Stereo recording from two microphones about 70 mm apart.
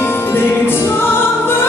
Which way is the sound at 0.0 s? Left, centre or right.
Left.